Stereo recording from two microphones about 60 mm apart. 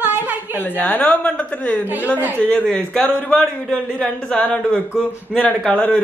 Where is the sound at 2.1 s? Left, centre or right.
Right.